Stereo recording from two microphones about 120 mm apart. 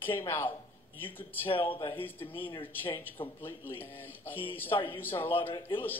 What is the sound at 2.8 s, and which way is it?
A woman's voice, 20° left (ahead or behind).